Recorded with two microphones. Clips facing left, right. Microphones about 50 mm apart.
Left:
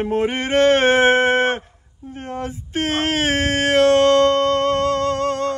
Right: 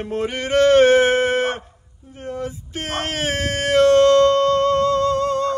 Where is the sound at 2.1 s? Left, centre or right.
Left.